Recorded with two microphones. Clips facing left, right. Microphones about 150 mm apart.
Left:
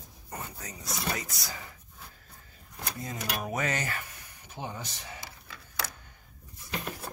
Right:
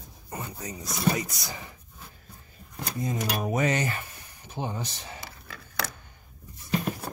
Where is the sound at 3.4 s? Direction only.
20° right (ahead or behind).